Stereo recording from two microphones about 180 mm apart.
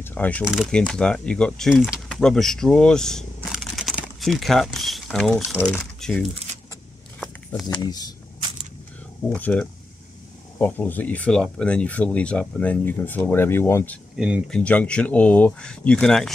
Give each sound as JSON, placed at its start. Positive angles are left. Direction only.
{"t": 0.0, "sound": "a sound", "side_deg": 10}
{"t": 0.5, "sound": "speech", "side_deg": 0}
{"t": 7.6, "sound": "speech", "side_deg": 20}
{"t": 9.3, "sound": "speech", "side_deg": 10}
{"t": 14.1, "sound": "speech", "side_deg": -5}
{"t": 14.6, "sound": "speech", "side_deg": 5}